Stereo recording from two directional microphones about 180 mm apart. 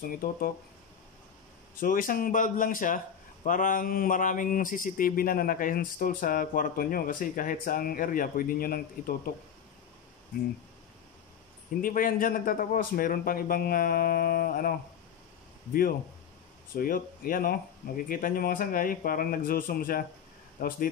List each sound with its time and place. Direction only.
0.1 s speech: 50° left (ahead or behind)
1.8 s speech: 50° left (ahead or behind)
11.8 s speech: 50° left (ahead or behind)
16.7 s speech: 50° left (ahead or behind)